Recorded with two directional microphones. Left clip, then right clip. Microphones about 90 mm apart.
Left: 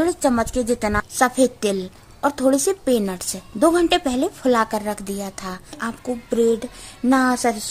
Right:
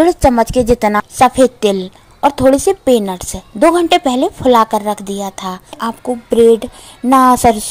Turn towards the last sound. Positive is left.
turn(degrees=-60)  # may be behind; listen again after turning